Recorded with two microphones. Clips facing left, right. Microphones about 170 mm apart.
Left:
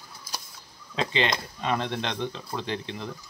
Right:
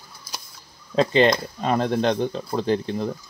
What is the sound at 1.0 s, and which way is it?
Speech, 45° right (ahead or behind).